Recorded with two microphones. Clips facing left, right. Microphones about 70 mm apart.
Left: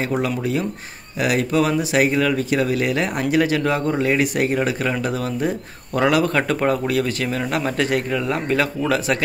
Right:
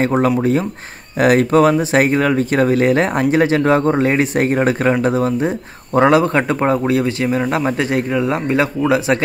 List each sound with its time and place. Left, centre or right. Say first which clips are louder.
0.0 s speech: right 7 dB; right